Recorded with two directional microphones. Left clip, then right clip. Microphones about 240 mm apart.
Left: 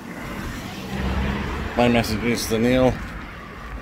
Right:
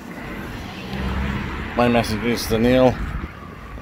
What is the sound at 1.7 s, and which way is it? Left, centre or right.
Speech, centre.